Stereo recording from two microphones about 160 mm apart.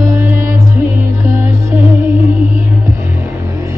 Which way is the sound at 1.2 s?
20° right (ahead or behind).